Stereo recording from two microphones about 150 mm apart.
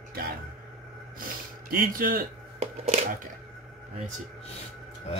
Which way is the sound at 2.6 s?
45° right (ahead or behind).